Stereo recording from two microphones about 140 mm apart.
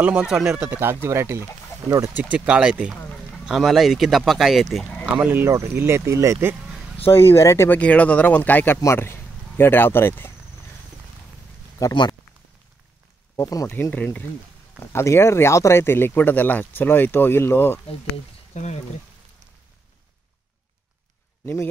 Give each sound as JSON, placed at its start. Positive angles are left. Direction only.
{"t": 0.0, "sound": "speech", "side_deg": -10}
{"t": 4.8, "sound": "a sound", "side_deg": 10}
{"t": 5.1, "sound": "speech", "side_deg": -15}
{"t": 7.1, "sound": "speech", "side_deg": 20}
{"t": 11.8, "sound": "speech", "side_deg": 30}
{"t": 13.4, "sound": "speech", "side_deg": 25}
{"t": 13.7, "sound": "speech", "side_deg": 10}
{"t": 17.8, "sound": "speech", "side_deg": 50}